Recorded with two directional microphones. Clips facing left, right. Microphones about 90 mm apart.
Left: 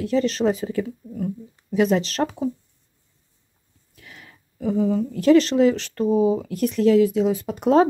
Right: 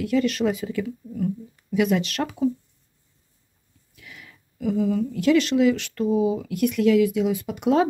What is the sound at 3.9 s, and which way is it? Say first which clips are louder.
Speech: even; 40° left (ahead or behind).